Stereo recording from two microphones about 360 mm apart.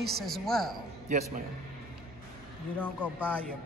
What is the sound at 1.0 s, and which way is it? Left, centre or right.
Speech, centre.